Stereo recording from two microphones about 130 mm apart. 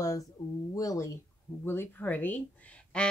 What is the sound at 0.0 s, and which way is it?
Speech, 25° left (ahead or behind).